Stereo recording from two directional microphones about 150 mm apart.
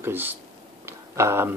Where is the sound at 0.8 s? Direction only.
15° right (ahead or behind).